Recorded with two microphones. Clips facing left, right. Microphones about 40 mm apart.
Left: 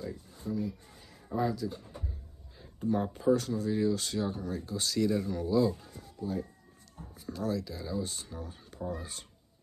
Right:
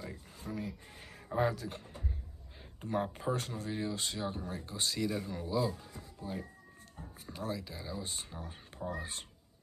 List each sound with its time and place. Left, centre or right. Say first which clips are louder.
0.1 s speech: left 6 dB; right
2.8 s speech: left 5 dB; right; by 5.7 s centre
6.2 s speech: left 7 dB; right